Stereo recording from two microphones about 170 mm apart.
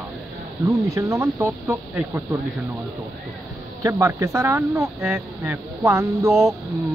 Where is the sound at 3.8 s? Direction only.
15° right (ahead or behind).